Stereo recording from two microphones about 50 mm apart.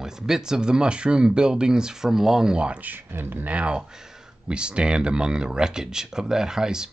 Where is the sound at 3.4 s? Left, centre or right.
Right.